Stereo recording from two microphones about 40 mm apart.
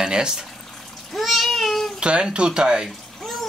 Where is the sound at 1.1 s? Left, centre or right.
Centre.